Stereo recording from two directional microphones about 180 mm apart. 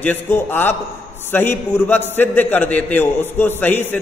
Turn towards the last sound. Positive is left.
turn(degrees=10)  # may be behind; listen again after turning